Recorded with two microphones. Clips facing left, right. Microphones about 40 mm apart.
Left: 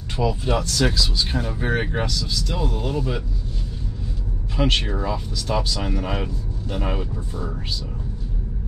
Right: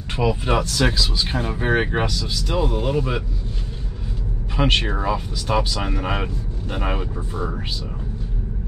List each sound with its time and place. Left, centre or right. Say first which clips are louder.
0.1 s speech: right 2 dB; right
4.6 s speech: right 2 dB; right